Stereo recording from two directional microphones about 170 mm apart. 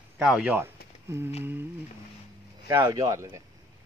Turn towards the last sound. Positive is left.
turn(degrees=-20)  # may be behind; listen again after turning